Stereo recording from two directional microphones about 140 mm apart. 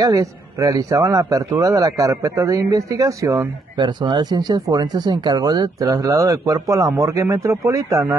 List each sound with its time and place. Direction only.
0.0 s a man's voice: 25° right (ahead or behind)